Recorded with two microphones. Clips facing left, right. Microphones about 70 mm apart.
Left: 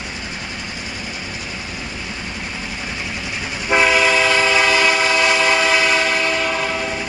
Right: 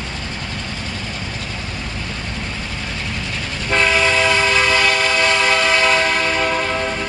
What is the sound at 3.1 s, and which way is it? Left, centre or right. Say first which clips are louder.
Train: even; centre.